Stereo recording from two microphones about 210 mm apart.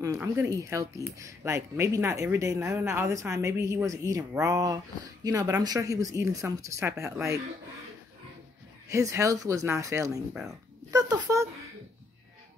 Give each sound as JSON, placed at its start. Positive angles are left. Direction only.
{"t": 0.0, "sound": "speech", "side_deg": -15}
{"t": 8.8, "sound": "speech", "side_deg": -15}